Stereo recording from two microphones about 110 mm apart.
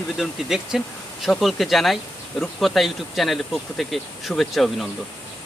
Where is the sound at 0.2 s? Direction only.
Centre (ahead or behind).